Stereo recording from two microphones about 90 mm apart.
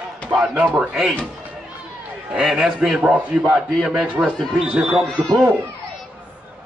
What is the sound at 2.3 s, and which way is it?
A man's voice, 5° right (ahead or behind).